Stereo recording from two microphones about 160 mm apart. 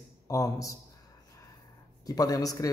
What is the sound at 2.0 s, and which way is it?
Speech, 25° left (ahead or behind).